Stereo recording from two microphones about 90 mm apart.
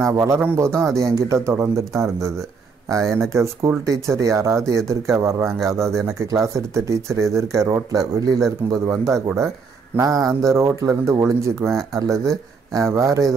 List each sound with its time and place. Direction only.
0.0 s speech: 35° right (ahead or behind)